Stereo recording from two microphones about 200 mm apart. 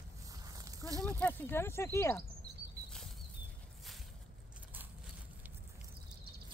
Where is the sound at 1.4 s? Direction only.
10° left (ahead or behind).